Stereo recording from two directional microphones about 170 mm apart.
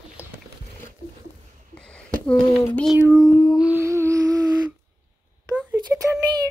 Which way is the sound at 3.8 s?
15° right (ahead or behind).